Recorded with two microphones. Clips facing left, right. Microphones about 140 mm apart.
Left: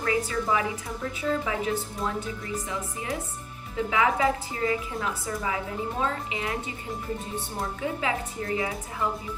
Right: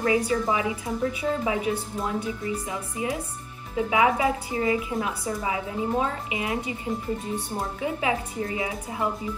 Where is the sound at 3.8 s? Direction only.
20° right (ahead or behind).